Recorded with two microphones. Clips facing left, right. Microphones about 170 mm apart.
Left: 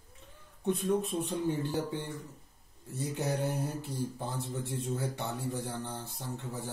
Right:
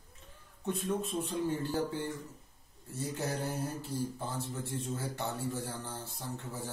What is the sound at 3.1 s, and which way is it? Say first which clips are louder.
Mantra: left 4 dB; 15° left (ahead or behind).